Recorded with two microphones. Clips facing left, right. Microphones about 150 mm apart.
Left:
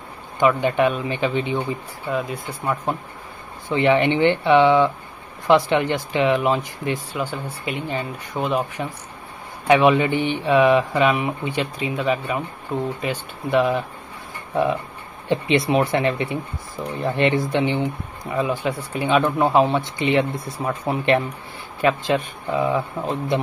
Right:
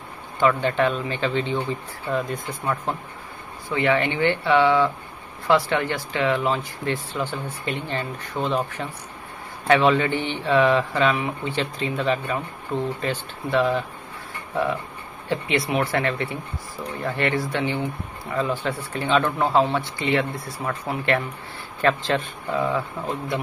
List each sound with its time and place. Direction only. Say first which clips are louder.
0.4 s speech: left 2 dB; 15° left (ahead or behind)